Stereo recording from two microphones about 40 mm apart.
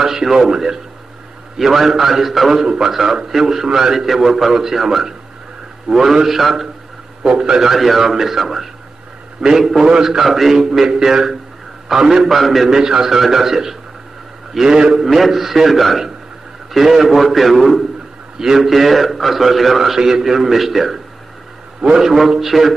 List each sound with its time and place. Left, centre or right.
0.0 s a man's voice: centre
7.2 s a man's voice: centre
7.7 s a man's voice: centre
12.7 s a man's voice: centre
15.0 s a man's voice: centre